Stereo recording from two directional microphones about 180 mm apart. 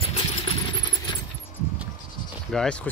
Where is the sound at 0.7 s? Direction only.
25° left (ahead or behind).